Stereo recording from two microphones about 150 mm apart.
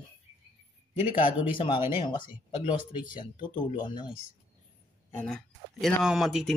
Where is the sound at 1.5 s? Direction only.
35° left (ahead or behind).